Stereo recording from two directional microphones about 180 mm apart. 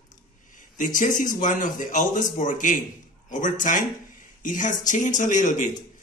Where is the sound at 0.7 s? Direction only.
45° left (ahead or behind).